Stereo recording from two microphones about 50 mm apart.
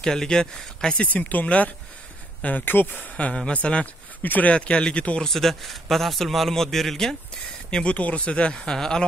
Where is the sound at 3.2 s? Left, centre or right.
Left.